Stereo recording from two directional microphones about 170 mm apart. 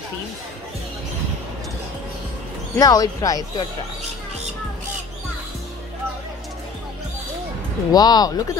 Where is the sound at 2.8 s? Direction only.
20° left (ahead or behind).